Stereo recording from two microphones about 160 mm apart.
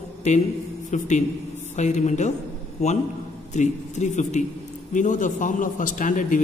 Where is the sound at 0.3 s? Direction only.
45° left (ahead or behind).